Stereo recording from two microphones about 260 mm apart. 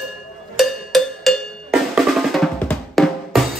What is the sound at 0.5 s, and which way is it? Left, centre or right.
Drum, centre.